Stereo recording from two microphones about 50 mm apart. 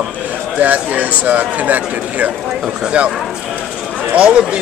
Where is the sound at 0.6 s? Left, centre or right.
Right.